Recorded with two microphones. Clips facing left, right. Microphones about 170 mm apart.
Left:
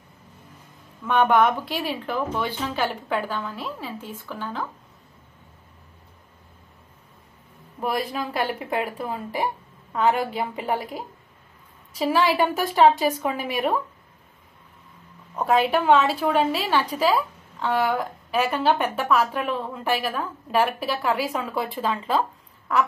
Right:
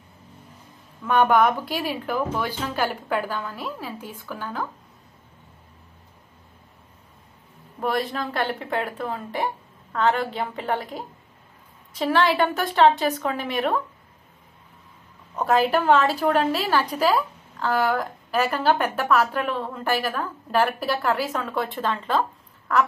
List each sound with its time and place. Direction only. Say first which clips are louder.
1.0 s a woman's voice: even; centre (ahead or behind)
7.8 s a woman's voice: right 1 dB; 5° left (ahead or behind)
15.3 s a woman's voice: even; centre (ahead or behind)